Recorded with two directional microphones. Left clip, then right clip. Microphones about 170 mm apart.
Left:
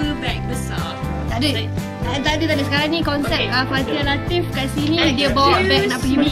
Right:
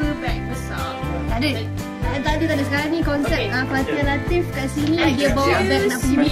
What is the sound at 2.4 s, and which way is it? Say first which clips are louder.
Speech: left 2 dB; 15° right (ahead or behind).